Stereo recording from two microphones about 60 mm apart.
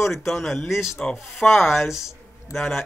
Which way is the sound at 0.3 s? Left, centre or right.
Centre.